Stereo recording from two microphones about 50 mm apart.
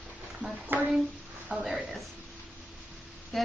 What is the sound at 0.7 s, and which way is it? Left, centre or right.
Speech, right.